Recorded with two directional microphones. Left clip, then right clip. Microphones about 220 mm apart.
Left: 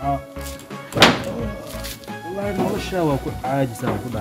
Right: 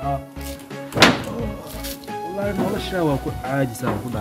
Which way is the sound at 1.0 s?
5° left (ahead or behind).